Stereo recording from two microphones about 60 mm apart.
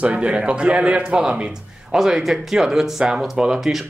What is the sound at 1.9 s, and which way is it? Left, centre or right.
Speech, centre.